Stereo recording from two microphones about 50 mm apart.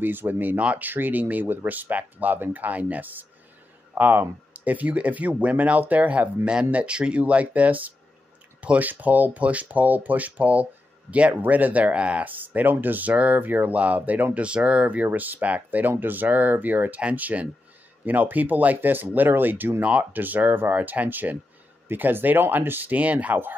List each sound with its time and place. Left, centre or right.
0.0 s speech: right
0.6 s speech: right
0.8 s speech: right
19.8 s speech: right